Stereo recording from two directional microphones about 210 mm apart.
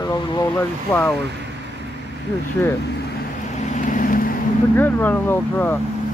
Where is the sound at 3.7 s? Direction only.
40° left (ahead or behind).